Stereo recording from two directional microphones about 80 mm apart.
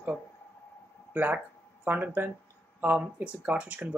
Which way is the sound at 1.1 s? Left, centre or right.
Right.